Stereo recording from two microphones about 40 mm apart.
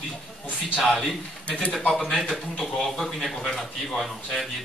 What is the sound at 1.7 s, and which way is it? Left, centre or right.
A man's voice, centre.